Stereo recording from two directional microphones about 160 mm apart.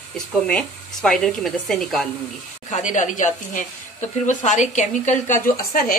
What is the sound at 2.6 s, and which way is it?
Speech, 50° left (ahead or behind).